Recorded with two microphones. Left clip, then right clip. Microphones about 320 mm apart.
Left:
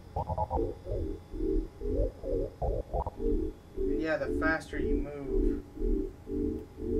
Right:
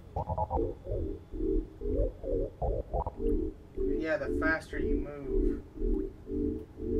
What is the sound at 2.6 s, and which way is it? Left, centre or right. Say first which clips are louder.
Stomach rumble: even; centre.